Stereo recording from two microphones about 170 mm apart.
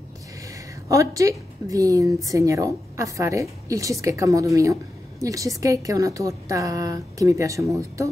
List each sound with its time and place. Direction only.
0.5 s a woman's voice: 20° right (ahead or behind)